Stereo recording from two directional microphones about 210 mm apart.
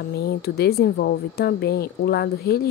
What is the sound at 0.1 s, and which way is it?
Speech, 50° left (ahead or behind).